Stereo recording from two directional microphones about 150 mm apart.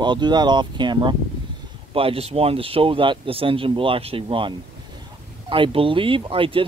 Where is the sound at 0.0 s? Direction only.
30° right (ahead or behind).